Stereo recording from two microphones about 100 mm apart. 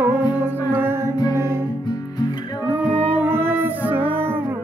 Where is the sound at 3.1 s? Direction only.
20° right (ahead or behind).